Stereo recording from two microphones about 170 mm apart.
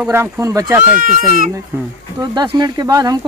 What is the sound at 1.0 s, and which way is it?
Speech, 50° right (ahead or behind).